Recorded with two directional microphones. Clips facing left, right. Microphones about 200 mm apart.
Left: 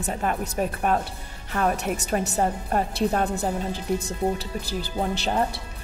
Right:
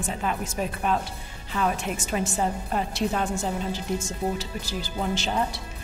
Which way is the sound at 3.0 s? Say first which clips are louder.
Left 3 dB; 35° left (ahead or behind).